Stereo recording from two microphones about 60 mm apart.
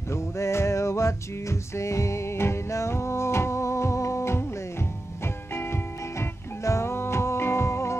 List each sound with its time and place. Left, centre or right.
0.1 s music: left